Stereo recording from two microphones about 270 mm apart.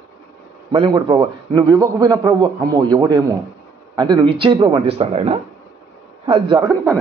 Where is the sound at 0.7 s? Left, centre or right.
Centre.